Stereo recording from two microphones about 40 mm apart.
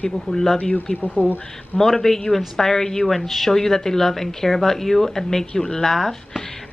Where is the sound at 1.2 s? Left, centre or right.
Left.